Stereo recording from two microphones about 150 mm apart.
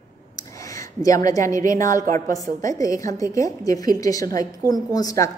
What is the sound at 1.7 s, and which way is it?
A woman's voice, 20° left (ahead or behind).